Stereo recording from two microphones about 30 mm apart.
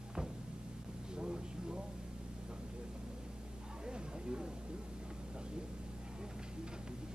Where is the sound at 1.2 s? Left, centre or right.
Right.